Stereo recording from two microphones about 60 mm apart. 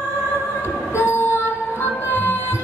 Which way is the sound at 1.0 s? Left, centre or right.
Left.